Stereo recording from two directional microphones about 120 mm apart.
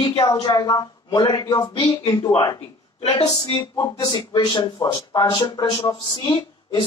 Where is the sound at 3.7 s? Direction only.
30° left (ahead or behind).